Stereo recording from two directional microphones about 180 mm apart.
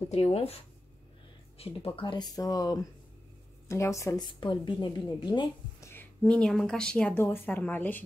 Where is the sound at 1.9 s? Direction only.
25° left (ahead or behind).